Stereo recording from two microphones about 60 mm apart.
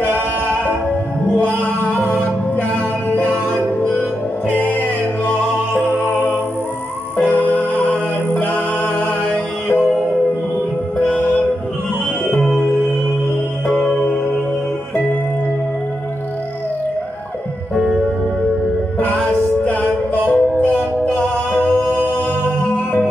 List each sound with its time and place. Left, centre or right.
2.0 s music: left
4.5 s music: left
11.0 s music: left
13.7 s music: centre
17.7 s music: centre
19.2 s music: left
21.5 s singing: left